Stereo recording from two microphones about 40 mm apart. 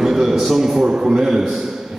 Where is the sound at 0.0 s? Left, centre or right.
Centre.